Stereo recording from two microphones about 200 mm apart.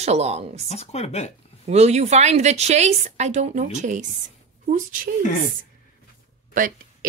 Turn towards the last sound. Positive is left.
turn(degrees=-45)  # may be behind; listen again after turning